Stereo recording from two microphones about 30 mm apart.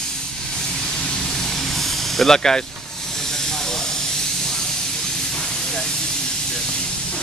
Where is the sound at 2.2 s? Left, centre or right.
Centre.